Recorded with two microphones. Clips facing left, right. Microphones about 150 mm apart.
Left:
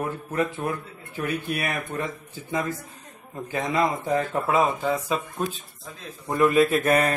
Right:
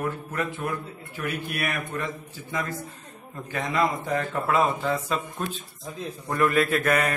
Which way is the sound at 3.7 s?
25° left (ahead or behind).